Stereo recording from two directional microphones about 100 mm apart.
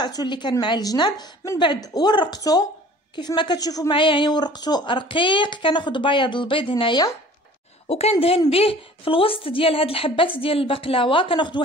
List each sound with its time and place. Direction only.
0.0 s a woman's voice: 45° left (ahead or behind)
3.9 s speech: 55° left (ahead or behind)
7.9 s speech: 90° left
8.5 s a woman's voice: 75° left (ahead or behind); by 11.6 s 50° left (ahead or behind)